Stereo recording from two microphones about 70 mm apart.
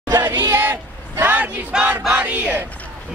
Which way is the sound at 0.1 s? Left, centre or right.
Right.